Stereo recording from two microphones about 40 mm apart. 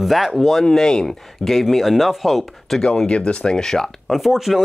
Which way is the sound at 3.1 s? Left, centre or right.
Left.